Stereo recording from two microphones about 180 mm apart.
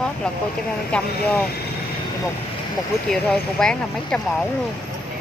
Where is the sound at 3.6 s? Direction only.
5° left (ahead or behind).